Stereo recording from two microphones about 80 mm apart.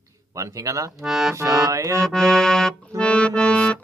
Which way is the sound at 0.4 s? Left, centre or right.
Right.